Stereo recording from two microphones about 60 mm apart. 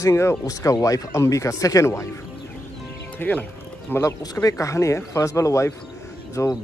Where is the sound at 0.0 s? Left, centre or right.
Left.